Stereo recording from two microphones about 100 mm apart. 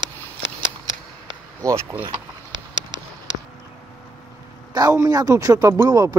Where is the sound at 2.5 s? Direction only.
55° right (ahead or behind).